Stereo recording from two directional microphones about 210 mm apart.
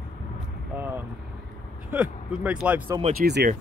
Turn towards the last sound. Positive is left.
turn(degrees=-50)  # may be behind; listen again after turning